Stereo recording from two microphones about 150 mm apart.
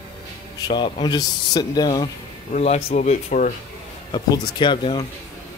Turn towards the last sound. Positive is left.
turn(degrees=35)  # may be behind; listen again after turning